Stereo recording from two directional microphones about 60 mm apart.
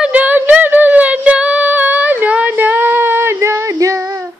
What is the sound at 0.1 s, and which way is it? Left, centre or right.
Child singing, right.